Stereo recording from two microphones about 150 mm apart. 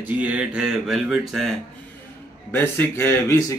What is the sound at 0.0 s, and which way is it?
Speech, 10° right (ahead or behind).